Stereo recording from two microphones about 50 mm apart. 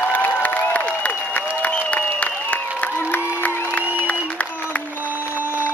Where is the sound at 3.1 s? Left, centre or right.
Left.